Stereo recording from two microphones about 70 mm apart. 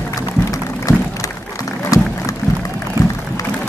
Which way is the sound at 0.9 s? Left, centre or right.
Left.